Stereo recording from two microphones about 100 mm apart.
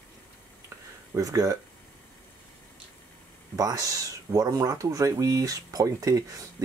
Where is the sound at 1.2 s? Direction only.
35° right (ahead or behind).